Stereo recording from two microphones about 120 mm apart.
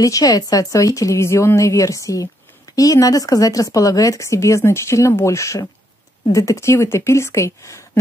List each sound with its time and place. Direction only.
0.0 s a woman's voice: 30° left (ahead or behind)